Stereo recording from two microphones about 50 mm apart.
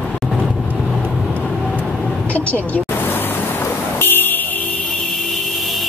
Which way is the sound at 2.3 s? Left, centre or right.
Left.